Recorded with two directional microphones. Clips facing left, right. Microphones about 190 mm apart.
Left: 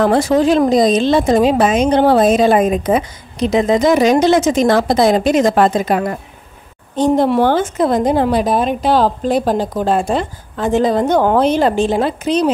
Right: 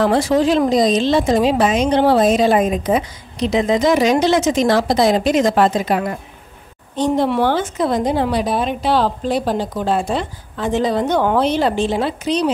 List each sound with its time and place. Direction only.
0.0 s speech: 50° left (ahead or behind)